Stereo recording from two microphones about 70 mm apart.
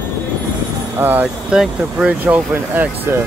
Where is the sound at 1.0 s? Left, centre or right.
Right.